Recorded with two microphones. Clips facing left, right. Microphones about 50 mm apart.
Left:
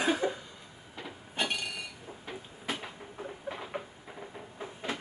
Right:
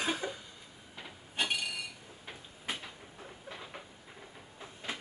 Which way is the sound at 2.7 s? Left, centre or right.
Left.